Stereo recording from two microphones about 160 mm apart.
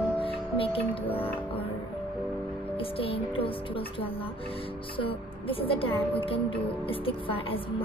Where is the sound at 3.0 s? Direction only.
35° left (ahead or behind).